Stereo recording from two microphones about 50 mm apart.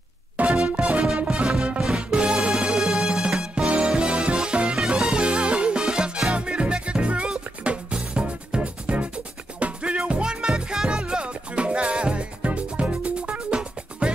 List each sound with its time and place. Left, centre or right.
0.4 s music: right